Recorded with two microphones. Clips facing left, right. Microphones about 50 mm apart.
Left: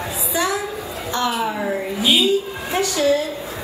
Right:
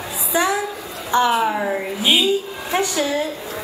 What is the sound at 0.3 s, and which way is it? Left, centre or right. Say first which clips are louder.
A woman's voice: right 3 dB; right.